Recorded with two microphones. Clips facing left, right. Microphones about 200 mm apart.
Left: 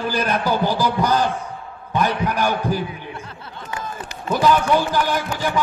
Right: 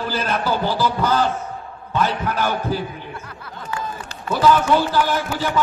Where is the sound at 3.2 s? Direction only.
25° left (ahead or behind).